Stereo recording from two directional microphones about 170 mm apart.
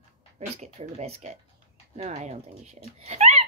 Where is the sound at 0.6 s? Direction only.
40° right (ahead or behind).